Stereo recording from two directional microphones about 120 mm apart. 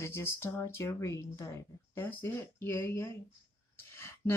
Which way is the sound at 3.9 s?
20° left (ahead or behind).